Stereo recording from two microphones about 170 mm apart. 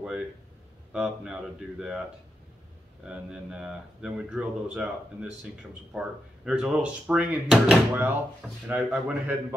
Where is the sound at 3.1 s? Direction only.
5° right (ahead or behind).